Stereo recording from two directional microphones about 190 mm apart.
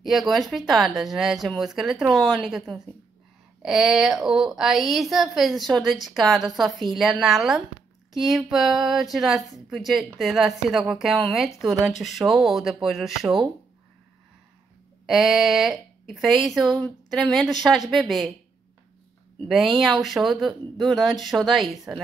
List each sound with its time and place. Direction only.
0.0 s a woman's voice: centre (ahead or behind)
15.0 s a woman's voice: centre (ahead or behind)
19.3 s a woman's voice: centre (ahead or behind)